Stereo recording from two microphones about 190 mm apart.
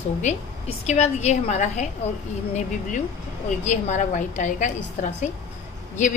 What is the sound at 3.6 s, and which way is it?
A woman's voice, 40° left (ahead or behind).